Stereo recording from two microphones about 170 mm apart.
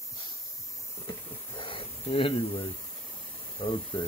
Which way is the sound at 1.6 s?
30° left (ahead or behind).